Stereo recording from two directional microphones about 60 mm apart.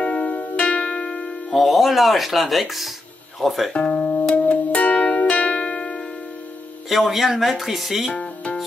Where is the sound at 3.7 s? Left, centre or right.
Centre.